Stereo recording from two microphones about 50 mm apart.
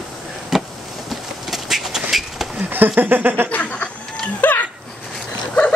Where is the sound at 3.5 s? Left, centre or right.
Left.